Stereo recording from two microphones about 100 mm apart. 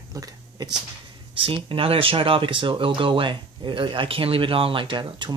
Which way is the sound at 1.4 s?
60° right (ahead or behind).